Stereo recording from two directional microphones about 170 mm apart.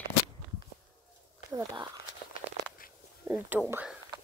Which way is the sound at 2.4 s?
45° left (ahead or behind).